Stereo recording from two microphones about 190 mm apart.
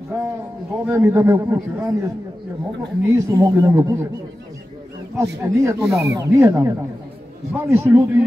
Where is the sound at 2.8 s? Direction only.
15° right (ahead or behind).